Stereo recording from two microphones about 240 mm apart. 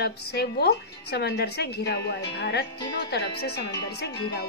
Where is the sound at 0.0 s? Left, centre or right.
Left.